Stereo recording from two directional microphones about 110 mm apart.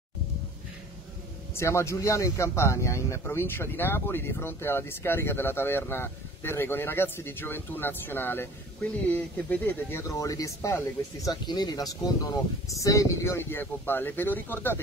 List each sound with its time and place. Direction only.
1.5 s speech: 25° left (ahead or behind)